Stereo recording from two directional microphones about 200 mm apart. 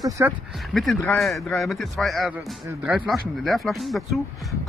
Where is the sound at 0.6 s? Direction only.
Centre (ahead or behind).